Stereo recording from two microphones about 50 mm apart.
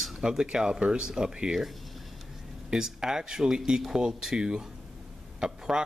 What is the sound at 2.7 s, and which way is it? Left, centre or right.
Speech, centre.